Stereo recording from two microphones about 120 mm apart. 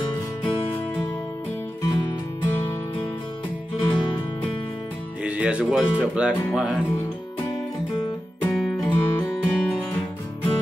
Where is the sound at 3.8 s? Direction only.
40° left (ahead or behind).